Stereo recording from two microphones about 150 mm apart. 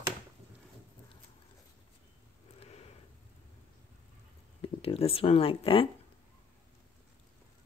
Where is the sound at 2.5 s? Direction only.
45° left (ahead or behind).